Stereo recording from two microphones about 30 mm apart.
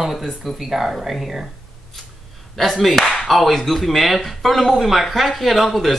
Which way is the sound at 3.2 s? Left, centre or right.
Centre.